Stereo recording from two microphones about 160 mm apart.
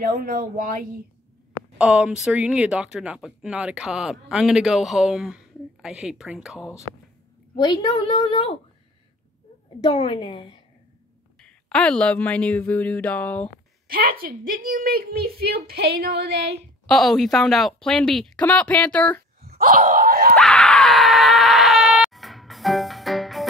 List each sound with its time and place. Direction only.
0.0 s speech: 60° right (ahead or behind)
1.8 s speech: 5° right (ahead or behind)
7.5 s a woman's voice: 30° left (ahead or behind)
9.9 s a woman's voice: 35° left (ahead or behind)
11.4 s speech: 5° left (ahead or behind)
13.8 s a woman's voice: 70° right (ahead or behind)
16.8 s speech: centre (ahead or behind)
19.4 s a sound: 65° right (ahead or behind)
20.3 s screaming: 5° left (ahead or behind)